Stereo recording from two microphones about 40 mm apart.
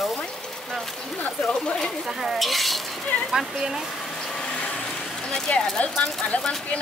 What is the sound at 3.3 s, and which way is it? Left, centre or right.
Speech, centre.